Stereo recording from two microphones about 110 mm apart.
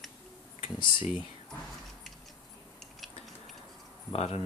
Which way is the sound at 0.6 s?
55° left (ahead or behind).